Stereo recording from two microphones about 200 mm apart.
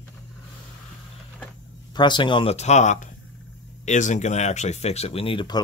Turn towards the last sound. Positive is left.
turn(degrees=25)  # may be behind; listen again after turning